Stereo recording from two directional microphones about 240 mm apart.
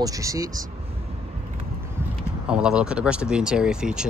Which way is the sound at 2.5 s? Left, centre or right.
Centre.